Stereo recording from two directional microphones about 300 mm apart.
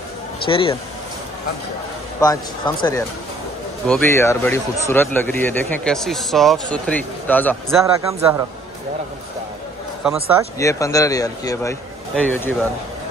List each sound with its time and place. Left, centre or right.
0.5 s a man's voice: centre
2.1 s a man's voice: centre
7.8 s speech: centre
10.6 s a man's voice: centre